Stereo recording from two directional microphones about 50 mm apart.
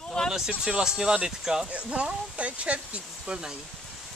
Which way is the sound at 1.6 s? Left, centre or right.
Right.